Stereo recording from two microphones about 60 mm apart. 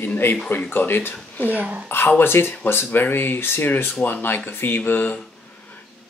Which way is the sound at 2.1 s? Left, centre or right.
Left.